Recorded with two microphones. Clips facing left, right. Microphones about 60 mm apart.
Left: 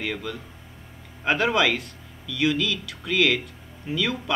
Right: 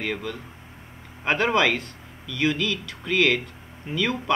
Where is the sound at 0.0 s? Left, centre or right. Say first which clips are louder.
Right 1 dB; centre.